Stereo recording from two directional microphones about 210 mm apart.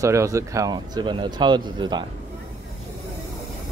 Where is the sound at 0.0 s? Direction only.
15° right (ahead or behind).